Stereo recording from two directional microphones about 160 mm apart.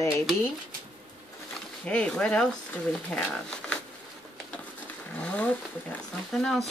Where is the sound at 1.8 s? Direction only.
5° left (ahead or behind).